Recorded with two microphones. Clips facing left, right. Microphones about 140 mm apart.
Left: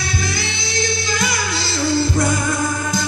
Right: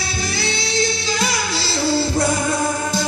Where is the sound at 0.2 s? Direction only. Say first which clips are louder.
Right 1 dB; 30° right (ahead or behind).